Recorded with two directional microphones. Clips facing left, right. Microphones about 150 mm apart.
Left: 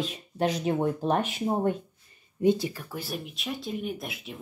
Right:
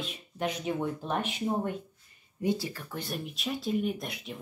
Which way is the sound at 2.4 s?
20° left (ahead or behind).